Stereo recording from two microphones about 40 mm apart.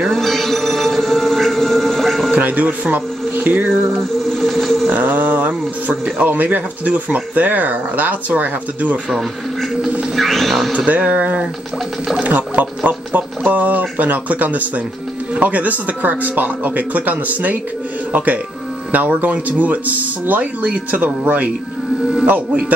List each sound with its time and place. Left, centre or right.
0.0 s music: centre
2.3 s speech: right
4.3 s a sound: centre
4.8 s speech: right
10.1 s music: centre
10.9 s speech: right